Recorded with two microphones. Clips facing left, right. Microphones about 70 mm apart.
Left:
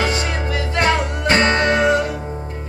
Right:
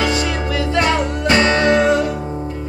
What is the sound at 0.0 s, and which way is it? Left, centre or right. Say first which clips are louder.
Music: right 2 dB; left.